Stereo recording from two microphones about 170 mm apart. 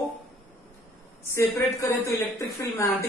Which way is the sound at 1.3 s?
15° left (ahead or behind).